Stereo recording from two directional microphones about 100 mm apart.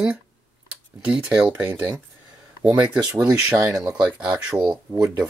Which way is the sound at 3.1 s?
10° right (ahead or behind).